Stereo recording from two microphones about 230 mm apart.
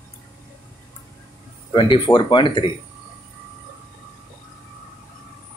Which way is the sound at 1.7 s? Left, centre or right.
Left.